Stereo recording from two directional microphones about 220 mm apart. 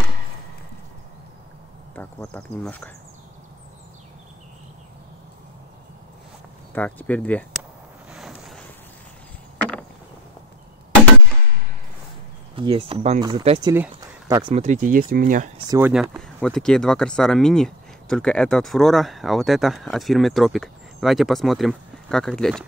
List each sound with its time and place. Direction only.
2.0 s speech: 5° left (ahead or behind)
6.7 s speech: 5° left (ahead or behind)
8.1 s wind noise: centre (ahead or behind)
9.6 s a sound: 5° left (ahead or behind)
12.5 s speech: 25° right (ahead or behind)
15.8 s speech: 5° right (ahead or behind)